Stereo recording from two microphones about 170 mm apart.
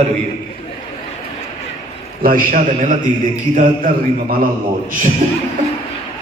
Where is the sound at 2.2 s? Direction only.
55° right (ahead or behind).